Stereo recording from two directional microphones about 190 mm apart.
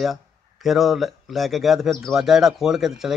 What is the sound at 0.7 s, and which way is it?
Speech, centre (ahead or behind).